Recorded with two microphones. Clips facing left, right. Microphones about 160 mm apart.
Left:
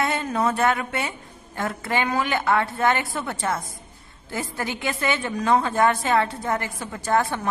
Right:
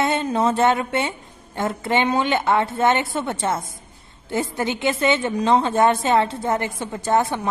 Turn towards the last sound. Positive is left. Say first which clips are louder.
# right 3 dB
turn(degrees=-20)  # may be behind; listen again after turning